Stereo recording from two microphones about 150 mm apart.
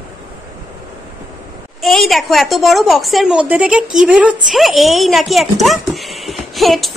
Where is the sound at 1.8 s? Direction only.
Centre (ahead or behind).